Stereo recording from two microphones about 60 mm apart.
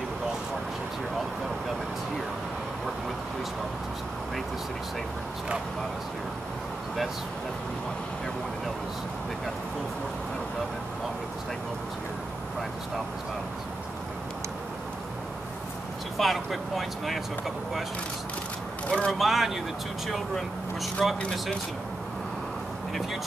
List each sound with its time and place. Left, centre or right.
16.2 s speech: centre
18.9 s speech: centre
19.1 s speech: centre